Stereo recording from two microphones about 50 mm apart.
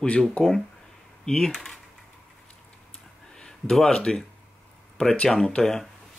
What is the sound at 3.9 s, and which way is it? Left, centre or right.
Speech, centre.